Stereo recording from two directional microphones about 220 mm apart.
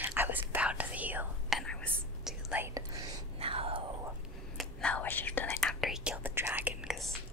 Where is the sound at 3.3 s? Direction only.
25° right (ahead or behind).